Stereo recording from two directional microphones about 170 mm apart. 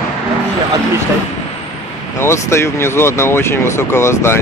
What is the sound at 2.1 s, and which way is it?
Speech, 15° left (ahead or behind).